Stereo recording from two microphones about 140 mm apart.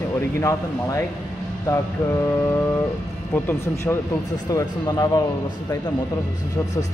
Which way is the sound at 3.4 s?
20° left (ahead or behind).